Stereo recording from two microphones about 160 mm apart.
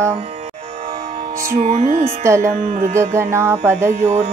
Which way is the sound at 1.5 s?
50° right (ahead or behind).